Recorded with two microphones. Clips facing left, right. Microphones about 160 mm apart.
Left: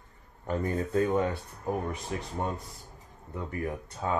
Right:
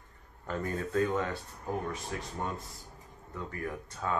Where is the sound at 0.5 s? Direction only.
20° left (ahead or behind).